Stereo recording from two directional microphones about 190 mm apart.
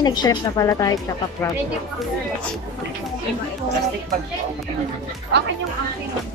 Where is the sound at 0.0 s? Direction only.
20° left (ahead or behind).